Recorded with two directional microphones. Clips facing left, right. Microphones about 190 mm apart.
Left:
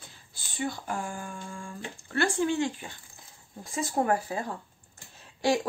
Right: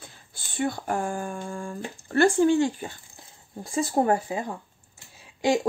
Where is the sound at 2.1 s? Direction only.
40° right (ahead or behind).